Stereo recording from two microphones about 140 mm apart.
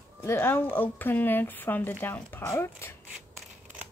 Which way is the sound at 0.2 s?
15° left (ahead or behind).